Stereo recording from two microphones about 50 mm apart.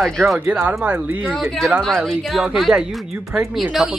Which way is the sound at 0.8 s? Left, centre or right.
Right.